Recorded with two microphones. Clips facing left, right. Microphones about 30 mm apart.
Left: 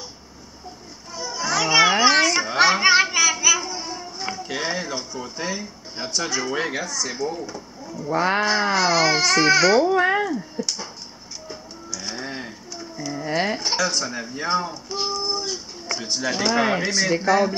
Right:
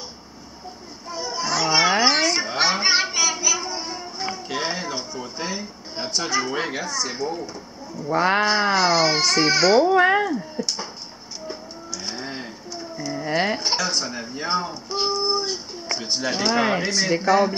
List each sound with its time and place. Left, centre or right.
1.1 s children playing: centre
1.5 s a sound: centre
6.5 s speech: centre
6.9 s speech: centre
10.6 s a sound: right
11.4 s music: centre
12.7 s speech: centre